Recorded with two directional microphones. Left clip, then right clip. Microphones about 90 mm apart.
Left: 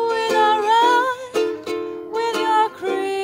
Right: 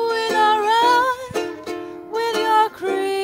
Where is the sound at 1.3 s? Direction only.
15° left (ahead or behind).